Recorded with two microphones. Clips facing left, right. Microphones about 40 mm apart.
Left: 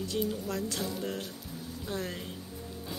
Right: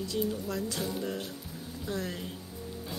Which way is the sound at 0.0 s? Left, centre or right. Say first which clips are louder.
Even; left.